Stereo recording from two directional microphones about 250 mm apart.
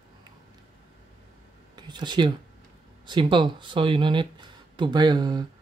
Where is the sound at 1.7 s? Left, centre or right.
Centre.